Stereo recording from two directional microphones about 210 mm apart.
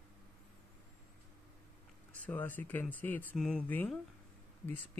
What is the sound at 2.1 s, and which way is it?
Speech, 10° left (ahead or behind).